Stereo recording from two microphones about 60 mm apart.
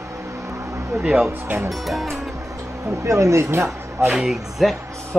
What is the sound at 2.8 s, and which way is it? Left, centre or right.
Speech, right.